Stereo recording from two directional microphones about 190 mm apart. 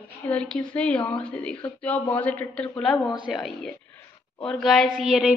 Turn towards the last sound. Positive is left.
turn(degrees=-5)  # may be behind; listen again after turning